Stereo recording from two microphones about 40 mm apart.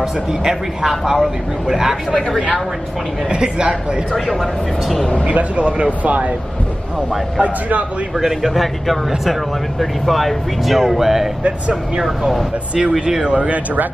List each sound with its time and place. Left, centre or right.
0.0 s speech: centre
3.3 s a woman's voice: right
4.1 s speech: centre
5.2 s speech: right
7.3 s speech: right
8.2 s speech: centre
13.2 s speech: right